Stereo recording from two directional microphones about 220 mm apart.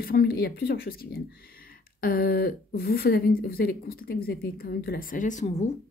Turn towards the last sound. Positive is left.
turn(degrees=30)  # may be behind; listen again after turning